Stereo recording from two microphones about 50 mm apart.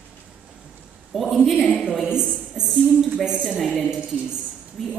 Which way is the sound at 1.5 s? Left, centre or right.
Centre.